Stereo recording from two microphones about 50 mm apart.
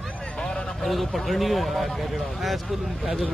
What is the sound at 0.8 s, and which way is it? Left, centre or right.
Speech, centre.